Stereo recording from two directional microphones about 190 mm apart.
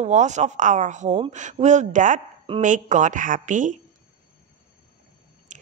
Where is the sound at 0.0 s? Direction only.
40° right (ahead or behind).